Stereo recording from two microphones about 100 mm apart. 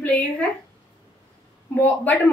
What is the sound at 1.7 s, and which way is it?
Speech, 15° left (ahead or behind).